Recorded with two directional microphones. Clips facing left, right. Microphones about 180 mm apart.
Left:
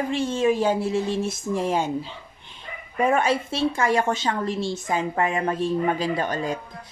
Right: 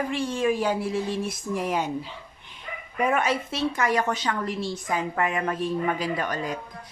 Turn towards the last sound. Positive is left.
turn(degrees=30)  # may be behind; listen again after turning